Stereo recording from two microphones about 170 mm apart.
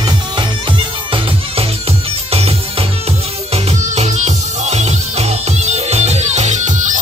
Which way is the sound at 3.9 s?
40° right (ahead or behind).